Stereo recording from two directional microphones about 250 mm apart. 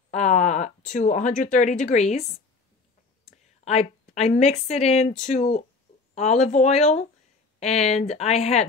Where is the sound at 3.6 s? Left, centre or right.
Left.